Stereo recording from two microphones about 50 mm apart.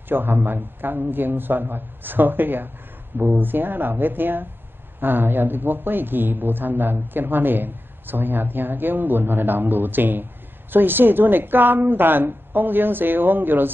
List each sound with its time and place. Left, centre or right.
0.1 s speech: right